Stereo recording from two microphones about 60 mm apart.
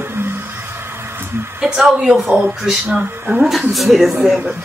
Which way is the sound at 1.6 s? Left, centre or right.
Centre.